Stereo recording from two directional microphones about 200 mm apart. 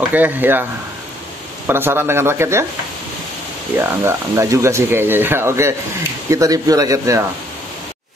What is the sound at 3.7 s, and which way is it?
Speech, 15° right (ahead or behind).